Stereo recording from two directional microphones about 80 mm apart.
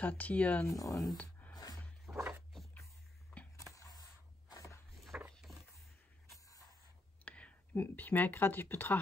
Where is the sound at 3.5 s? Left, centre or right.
Left.